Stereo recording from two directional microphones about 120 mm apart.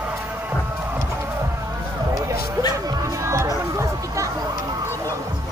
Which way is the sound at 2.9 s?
25° right (ahead or behind).